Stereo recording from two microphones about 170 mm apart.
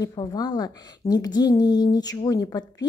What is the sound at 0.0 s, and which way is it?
A woman's voice, 25° left (ahead or behind).